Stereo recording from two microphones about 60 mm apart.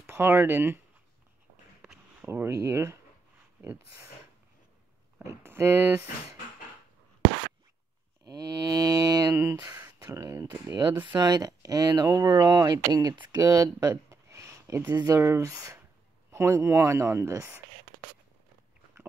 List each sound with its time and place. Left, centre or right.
0.0 s speech: right
2.2 s speech: right
3.6 s speech: right
5.4 s speech: right
8.3 s music: right
9.3 s a sound: right
10.2 s speech: right
14.1 s a sound: right
15.1 s speech: right